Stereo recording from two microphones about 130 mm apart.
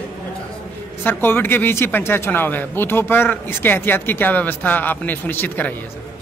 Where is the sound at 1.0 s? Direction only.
15° left (ahead or behind).